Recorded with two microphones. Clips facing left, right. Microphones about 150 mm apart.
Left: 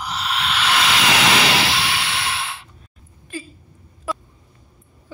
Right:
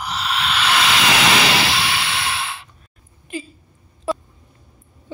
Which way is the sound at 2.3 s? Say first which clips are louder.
Right 1 dB; 90° right.